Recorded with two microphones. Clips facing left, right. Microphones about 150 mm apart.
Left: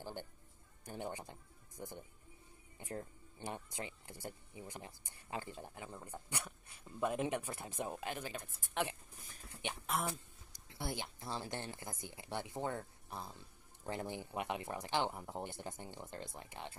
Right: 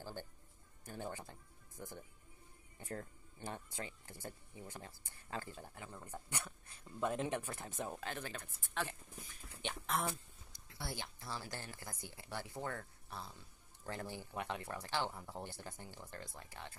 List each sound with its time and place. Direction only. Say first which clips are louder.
0.0 s a sound: left 1 dB; 20° left (ahead or behind)
0.8 s speech: left 2 dB; 15° left (ahead or behind)
9.6 s speech: even; 15° left (ahead or behind)